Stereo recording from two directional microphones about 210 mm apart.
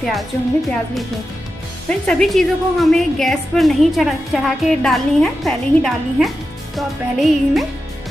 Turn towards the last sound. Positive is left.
turn(degrees=0)  # may be behind; listen again after turning